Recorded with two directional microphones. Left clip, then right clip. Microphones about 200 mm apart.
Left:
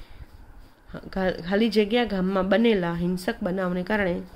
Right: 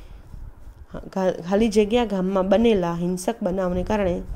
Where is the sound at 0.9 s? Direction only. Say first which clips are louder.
Right 3 dB; 15° right (ahead or behind).